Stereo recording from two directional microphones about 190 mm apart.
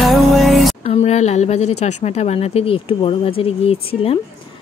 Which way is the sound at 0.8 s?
35° left (ahead or behind).